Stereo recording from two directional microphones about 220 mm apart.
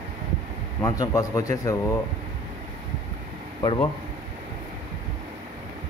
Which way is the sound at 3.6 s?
20° left (ahead or behind).